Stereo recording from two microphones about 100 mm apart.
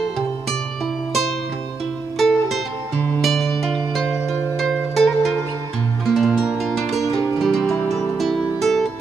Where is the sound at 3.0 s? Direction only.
15° left (ahead or behind).